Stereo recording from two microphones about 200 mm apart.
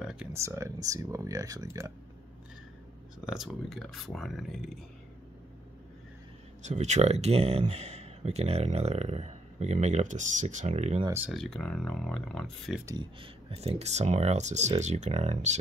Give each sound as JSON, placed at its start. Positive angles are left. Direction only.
{"t": 0.0, "sound": "speech", "side_deg": -5}
{"t": 3.3, "sound": "speech", "side_deg": -5}
{"t": 6.6, "sound": "speech", "side_deg": -35}
{"t": 11.1, "sound": "speech", "side_deg": -5}
{"t": 12.8, "sound": "speech", "side_deg": -20}